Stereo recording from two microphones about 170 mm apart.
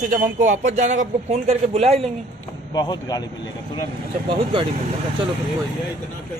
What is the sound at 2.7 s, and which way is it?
Speech, 20° left (ahead or behind).